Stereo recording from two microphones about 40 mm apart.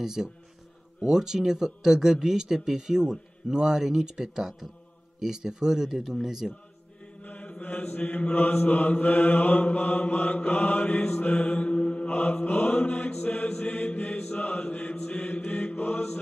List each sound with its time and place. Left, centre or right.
0.0 s speech: centre
7.2 s mantra: left
7.6 s mantra: left
11.3 s mantra: left
12.1 s mantra: left
12.9 s chant: left
13.7 s mantra: left